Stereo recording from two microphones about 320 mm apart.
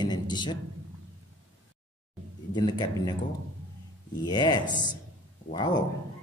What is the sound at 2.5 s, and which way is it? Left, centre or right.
Speech, centre.